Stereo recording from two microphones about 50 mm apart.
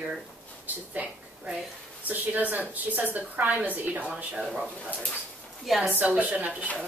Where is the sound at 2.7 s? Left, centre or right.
Right.